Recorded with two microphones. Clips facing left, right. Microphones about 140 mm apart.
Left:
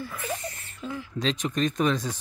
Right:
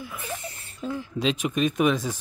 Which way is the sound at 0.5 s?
30° right (ahead or behind).